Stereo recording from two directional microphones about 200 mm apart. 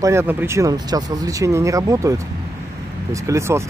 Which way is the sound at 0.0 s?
10° right (ahead or behind).